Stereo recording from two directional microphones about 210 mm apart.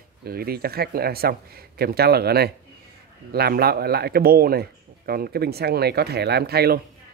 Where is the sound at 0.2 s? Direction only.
45° right (ahead or behind).